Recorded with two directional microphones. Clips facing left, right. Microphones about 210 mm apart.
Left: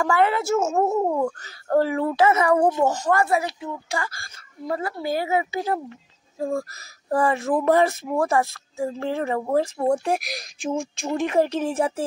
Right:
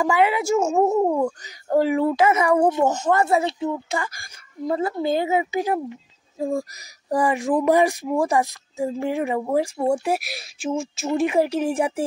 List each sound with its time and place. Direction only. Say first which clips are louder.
0.0 s speech: right 1 dB; 15° right (ahead or behind)
2.7 s speech: right 1 dB; 20° right (ahead or behind)